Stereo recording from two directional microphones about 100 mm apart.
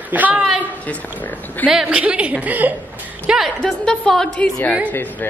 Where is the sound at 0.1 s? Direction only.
15° right (ahead or behind).